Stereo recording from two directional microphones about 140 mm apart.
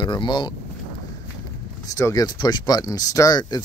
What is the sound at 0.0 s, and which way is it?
Speech, 35° left (ahead or behind).